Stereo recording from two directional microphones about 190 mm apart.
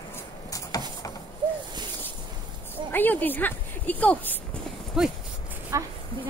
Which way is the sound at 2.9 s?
10° left (ahead or behind).